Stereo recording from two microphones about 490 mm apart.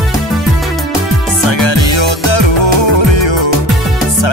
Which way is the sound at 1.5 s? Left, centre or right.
Left.